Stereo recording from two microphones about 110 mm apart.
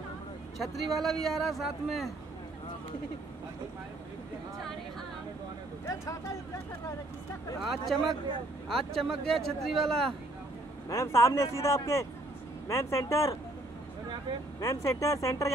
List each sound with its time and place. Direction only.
0.6 s speech: centre (ahead or behind)
7.6 s speech: centre (ahead or behind)
10.9 s speech: 30° left (ahead or behind)
14.6 s speech: 30° left (ahead or behind)